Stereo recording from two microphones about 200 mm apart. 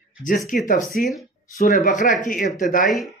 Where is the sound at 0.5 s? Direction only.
45° left (ahead or behind).